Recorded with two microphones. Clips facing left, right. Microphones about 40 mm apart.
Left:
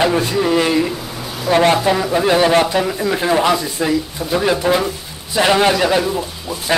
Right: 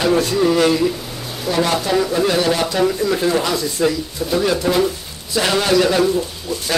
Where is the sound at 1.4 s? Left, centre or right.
Left.